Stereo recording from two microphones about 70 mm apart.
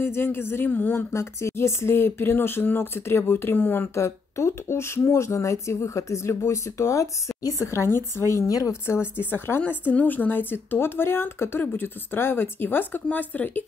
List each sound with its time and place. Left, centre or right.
0.0 s speech: left
1.1 s speech: left
3.9 s speech: left
8.8 s speech: left
9.6 s speech: left